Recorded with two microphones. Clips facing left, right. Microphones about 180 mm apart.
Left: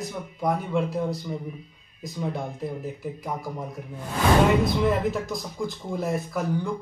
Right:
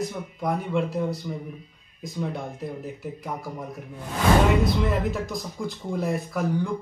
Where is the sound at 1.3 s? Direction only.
Centre (ahead or behind).